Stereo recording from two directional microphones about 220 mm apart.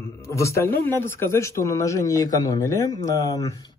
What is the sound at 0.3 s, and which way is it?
Speech, 15° left (ahead or behind).